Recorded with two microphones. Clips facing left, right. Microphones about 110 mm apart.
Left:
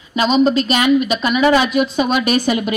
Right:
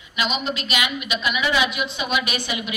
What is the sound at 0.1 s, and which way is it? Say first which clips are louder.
A woman's voice: left 12 dB; 35° left (ahead or behind).